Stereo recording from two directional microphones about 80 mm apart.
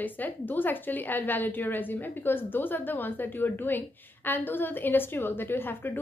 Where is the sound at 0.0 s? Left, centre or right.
Left.